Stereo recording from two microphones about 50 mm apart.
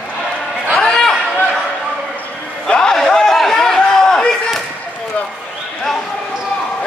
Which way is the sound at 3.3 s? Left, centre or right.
Centre.